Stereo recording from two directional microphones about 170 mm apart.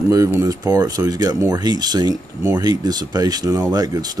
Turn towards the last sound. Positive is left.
turn(degrees=-20)  # may be behind; listen again after turning